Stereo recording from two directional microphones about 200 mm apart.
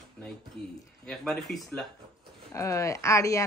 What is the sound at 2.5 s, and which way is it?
Speech, 15° left (ahead or behind).